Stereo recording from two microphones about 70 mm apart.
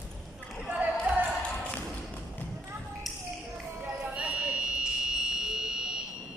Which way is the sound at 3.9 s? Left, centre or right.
Centre.